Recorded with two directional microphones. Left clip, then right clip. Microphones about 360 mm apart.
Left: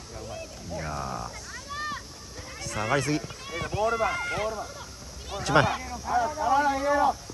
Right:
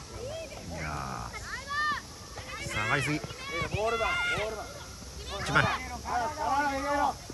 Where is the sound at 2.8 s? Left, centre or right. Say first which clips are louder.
Left 3 dB; centre.